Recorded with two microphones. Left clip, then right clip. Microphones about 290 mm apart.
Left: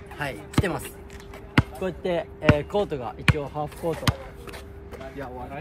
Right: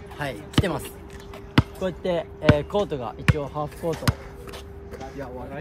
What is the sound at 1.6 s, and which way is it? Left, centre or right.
Speech, centre.